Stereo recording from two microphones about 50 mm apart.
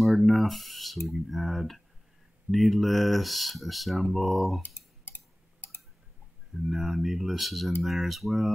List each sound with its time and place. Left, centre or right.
0.2 s speech: centre
4.6 s a sound: left
6.7 s speech: centre